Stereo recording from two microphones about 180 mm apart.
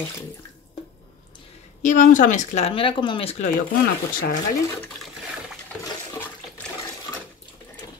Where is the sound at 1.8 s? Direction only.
45° left (ahead or behind).